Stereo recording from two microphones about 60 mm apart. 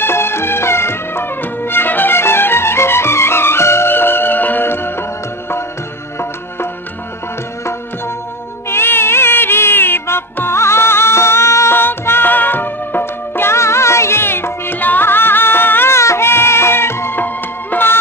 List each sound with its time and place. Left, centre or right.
0.0 s music: left
8.6 s music: left